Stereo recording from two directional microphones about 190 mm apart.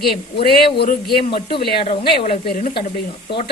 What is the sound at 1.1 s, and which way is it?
Speech, 25° left (ahead or behind).